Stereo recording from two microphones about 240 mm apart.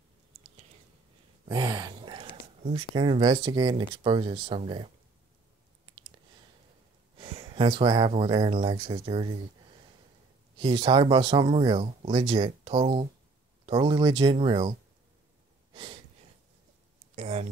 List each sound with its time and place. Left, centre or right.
1.5 s speech: centre
5.9 s clicking: right
7.2 s speech: right
15.7 s a sound: right